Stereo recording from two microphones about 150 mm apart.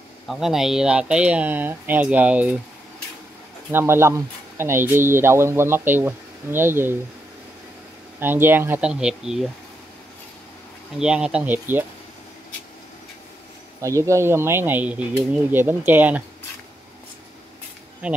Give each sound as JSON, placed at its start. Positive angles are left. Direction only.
{"t": 0.3, "sound": "speech", "side_deg": -5}
{"t": 3.7, "sound": "speech", "side_deg": -15}
{"t": 8.2, "sound": "speech", "side_deg": -15}
{"t": 11.0, "sound": "speech", "side_deg": -5}
{"t": 13.7, "sound": "speech", "side_deg": -20}
{"t": 18.0, "sound": "speech", "side_deg": -10}